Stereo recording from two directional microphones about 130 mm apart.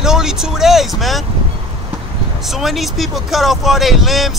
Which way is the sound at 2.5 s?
Centre (ahead or behind).